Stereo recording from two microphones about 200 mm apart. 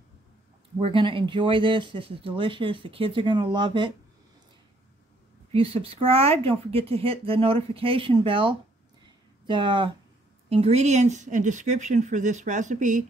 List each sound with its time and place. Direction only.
0.7 s speech: 25° right (ahead or behind)
5.5 s speech: 30° right (ahead or behind)